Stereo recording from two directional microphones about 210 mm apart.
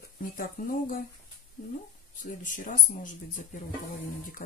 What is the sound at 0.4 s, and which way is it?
Speech, 45° left (ahead or behind).